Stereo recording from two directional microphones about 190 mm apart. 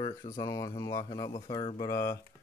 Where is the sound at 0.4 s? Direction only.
20° left (ahead or behind).